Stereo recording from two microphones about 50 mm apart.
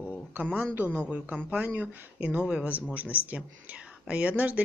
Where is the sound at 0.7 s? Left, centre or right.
Right.